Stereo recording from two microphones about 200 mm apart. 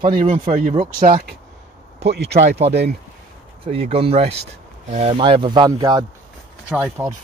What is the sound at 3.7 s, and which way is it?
Speech, 30° right (ahead or behind).